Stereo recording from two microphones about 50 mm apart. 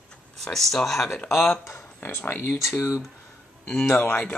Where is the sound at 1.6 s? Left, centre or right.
Left.